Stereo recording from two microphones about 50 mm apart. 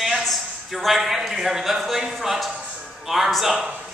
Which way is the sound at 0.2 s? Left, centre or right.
Centre.